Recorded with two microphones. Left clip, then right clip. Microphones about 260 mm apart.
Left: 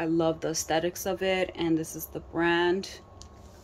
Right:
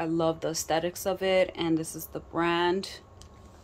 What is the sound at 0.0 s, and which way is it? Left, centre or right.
Speech, centre.